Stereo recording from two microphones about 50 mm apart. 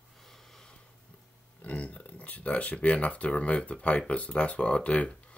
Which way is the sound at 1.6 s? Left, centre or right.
Left.